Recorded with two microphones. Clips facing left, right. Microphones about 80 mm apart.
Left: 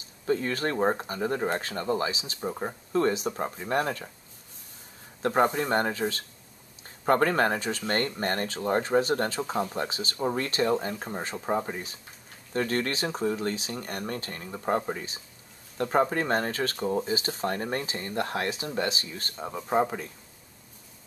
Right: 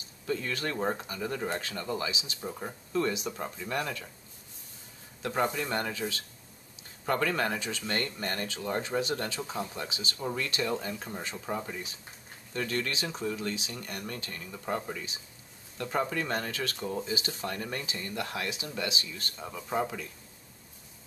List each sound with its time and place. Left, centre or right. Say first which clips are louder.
0.3 s speech: left 5 dB; left
5.2 s speech: left 6 dB; left